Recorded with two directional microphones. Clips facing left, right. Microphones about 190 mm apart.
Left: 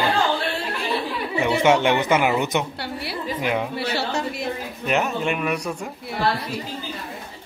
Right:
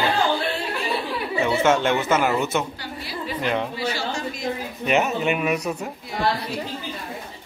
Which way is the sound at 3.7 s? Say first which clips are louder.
Left 2 dB; 65° left (ahead or behind).